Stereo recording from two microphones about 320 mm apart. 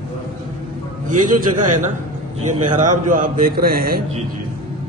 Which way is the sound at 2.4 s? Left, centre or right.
Right.